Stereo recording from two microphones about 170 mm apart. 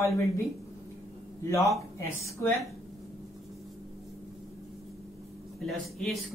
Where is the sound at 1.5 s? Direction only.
20° left (ahead or behind).